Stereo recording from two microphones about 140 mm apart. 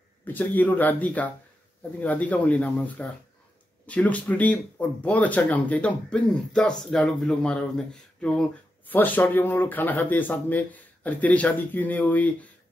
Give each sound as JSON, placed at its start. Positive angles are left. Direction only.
{"t": 0.3, "sound": "speech", "side_deg": 10}